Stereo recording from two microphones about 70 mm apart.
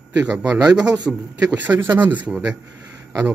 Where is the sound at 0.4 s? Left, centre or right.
Centre.